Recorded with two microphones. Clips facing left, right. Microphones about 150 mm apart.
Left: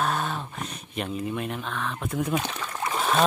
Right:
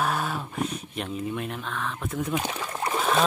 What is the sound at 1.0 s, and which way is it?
Speech, centre (ahead or behind).